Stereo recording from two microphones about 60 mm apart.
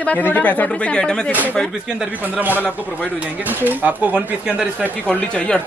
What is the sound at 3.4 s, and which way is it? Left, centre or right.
Speech, right.